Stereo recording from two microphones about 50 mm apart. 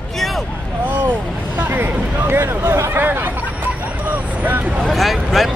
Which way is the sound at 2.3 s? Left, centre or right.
Right.